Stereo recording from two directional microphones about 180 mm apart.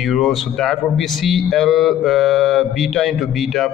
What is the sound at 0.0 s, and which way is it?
A man's voice, centre (ahead or behind).